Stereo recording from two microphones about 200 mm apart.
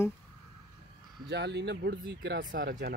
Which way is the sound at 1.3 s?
55° right (ahead or behind).